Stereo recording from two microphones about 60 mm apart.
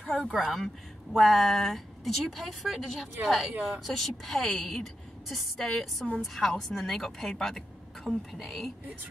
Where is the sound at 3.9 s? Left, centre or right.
Centre.